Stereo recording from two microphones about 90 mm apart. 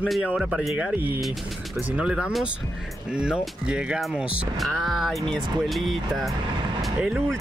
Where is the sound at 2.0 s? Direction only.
5° right (ahead or behind).